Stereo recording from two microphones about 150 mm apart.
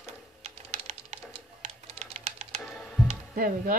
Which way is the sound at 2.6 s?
Centre (ahead or behind).